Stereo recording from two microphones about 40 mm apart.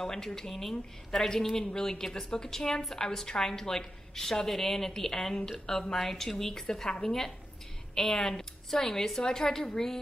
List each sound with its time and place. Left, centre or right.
0.0 s a woman's voice: centre